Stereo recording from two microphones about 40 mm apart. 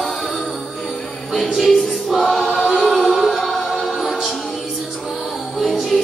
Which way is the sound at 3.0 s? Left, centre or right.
Centre.